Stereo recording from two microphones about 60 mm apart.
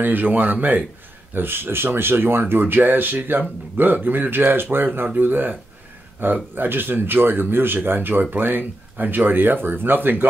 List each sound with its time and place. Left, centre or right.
0.0 s speech: right